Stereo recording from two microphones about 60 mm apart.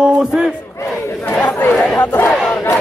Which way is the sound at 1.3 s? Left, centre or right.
Left.